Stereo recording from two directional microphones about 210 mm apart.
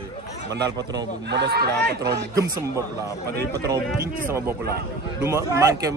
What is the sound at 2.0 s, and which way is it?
Speech, 15° right (ahead or behind).